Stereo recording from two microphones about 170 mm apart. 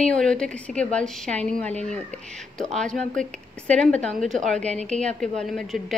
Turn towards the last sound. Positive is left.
turn(degrees=0)  # may be behind; listen again after turning